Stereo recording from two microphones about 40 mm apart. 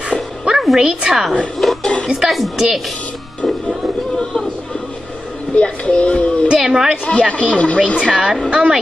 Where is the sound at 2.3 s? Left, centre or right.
Centre.